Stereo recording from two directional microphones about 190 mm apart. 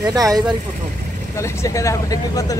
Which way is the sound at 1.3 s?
15° left (ahead or behind).